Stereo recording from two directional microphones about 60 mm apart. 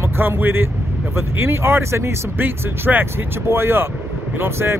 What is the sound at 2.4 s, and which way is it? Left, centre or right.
Speech, right.